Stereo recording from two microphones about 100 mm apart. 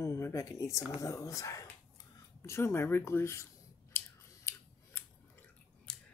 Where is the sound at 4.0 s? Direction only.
25° left (ahead or behind).